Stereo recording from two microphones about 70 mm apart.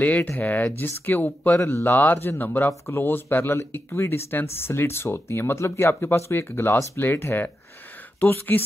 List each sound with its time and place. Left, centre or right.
0.0 s speech: left
1.6 s speech: left